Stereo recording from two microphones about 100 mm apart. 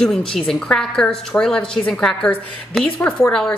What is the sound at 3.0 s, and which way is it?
Speech, 25° left (ahead or behind).